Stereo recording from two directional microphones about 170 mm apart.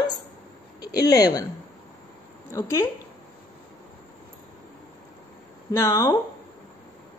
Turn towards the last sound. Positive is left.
turn(degrees=20)  # may be behind; listen again after turning